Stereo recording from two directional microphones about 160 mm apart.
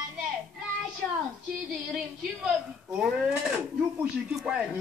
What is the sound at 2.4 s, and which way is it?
Speech, 5° right (ahead or behind).